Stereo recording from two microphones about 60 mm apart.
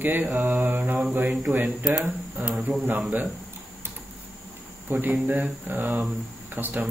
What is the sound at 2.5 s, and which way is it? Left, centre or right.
Speech, centre.